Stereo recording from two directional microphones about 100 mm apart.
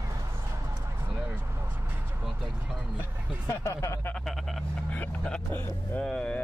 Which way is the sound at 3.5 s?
30° left (ahead or behind).